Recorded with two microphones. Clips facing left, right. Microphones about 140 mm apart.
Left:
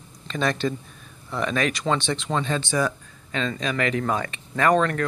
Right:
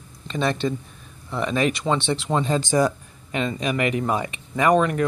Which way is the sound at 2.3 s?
15° right (ahead or behind).